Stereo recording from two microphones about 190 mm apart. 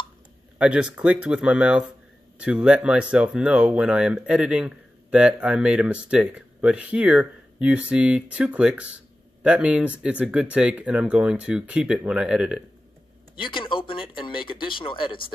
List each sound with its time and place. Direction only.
0.6 s speech: 5° right (ahead or behind)
13.4 s speech: 25° left (ahead or behind)